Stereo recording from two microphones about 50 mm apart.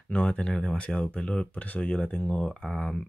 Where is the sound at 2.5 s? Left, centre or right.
Centre.